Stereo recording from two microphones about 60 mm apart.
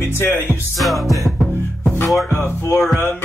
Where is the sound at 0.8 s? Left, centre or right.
Centre.